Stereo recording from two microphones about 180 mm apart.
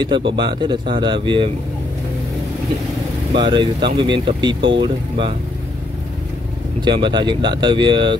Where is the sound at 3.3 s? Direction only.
25° right (ahead or behind).